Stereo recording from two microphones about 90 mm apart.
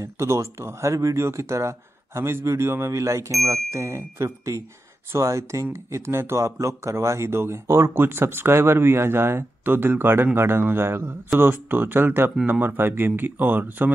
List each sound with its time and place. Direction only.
0.0 s speech: 35° right (ahead or behind)